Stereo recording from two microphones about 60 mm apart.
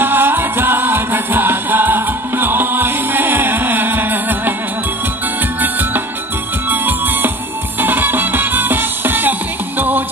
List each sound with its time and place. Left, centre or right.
0.0 s music: right
5.6 s music: right